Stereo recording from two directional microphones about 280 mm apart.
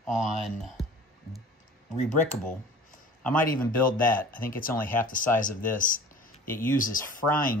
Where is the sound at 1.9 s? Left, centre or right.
Left.